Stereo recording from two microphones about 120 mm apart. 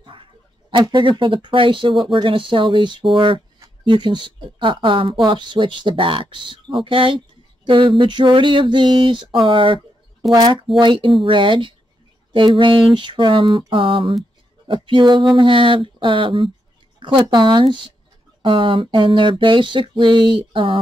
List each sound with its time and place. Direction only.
0.0 s speech: 45° right (ahead or behind)